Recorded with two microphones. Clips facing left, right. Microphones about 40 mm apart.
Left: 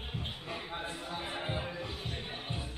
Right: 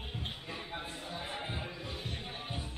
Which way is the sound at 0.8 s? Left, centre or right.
Left.